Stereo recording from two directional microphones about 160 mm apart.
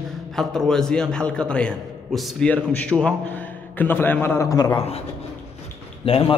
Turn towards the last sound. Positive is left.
turn(degrees=35)  # may be behind; listen again after turning